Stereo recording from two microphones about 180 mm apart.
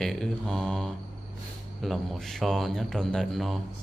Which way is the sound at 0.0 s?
5° left (ahead or behind).